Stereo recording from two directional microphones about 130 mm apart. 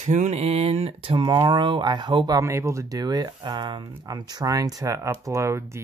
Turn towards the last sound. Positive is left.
turn(degrees=-20)  # may be behind; listen again after turning